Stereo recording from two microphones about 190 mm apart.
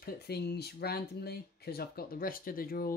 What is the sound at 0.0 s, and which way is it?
Speech, 60° left (ahead or behind).